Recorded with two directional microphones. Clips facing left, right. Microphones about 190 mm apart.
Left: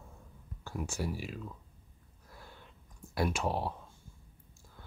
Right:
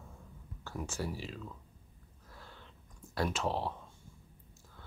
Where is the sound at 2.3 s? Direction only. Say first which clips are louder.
Left 1 dB; 15° left (ahead or behind).